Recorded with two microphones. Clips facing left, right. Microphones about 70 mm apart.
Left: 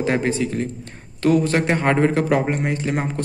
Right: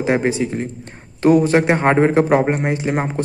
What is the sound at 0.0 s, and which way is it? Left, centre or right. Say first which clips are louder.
Speech: right 3 dB; centre.